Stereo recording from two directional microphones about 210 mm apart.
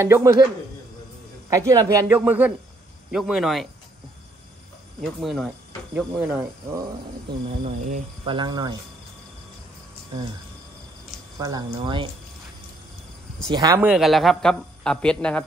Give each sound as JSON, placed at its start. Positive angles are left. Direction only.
{"t": 0.0, "sound": "speech", "side_deg": -15}
{"t": 1.7, "sound": "speech", "side_deg": -15}
{"t": 5.2, "sound": "speech", "side_deg": 0}
{"t": 7.6, "sound": "speech", "side_deg": -30}
{"t": 8.4, "sound": "speech", "side_deg": -20}
{"t": 10.1, "sound": "speech", "side_deg": -25}
{"t": 11.3, "sound": "speech", "side_deg": -20}
{"t": 13.5, "sound": "speech", "side_deg": -20}
{"t": 13.7, "sound": "speech", "side_deg": -5}